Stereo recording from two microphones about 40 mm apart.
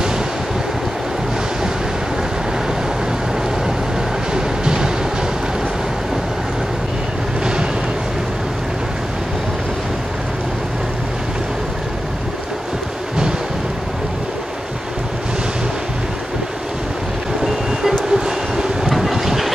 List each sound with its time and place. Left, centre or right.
4.3 s train: centre
18.1 s vehicle: centre